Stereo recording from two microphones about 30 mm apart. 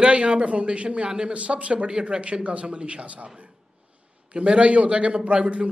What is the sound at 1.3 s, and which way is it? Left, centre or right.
Speech, right.